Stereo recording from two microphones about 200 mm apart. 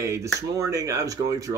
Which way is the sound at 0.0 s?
15° right (ahead or behind).